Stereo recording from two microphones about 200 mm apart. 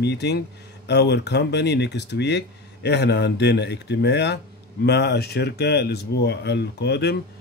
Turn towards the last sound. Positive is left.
turn(degrees=55)  # may be behind; listen again after turning